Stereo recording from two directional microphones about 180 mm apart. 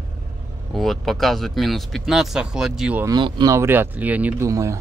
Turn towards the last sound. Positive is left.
turn(degrees=-15)  # may be behind; listen again after turning